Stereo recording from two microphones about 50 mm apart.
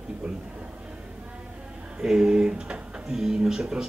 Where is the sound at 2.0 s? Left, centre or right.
Centre.